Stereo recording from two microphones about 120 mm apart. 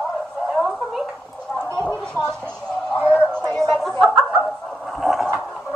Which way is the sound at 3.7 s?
Centre (ahead or behind).